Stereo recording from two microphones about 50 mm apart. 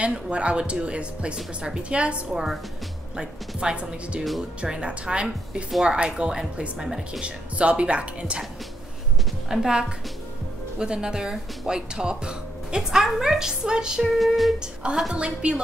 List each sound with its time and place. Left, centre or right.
0.0 s a woman's voice: right
2.3 s a woman's voice: centre
3.2 s speech: centre
4.2 s a woman's voice: centre
4.6 s a woman's voice: right
9.5 s speech: centre
12.9 s speech: centre
14.8 s a woman's voice: centre